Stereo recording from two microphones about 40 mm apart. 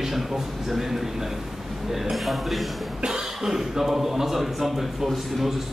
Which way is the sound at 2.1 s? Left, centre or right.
Centre.